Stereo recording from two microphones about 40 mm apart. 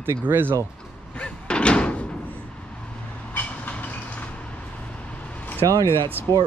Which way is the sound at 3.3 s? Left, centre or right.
Left.